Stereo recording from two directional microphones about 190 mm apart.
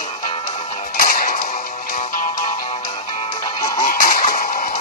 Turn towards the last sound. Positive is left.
turn(degrees=45)  # may be behind; listen again after turning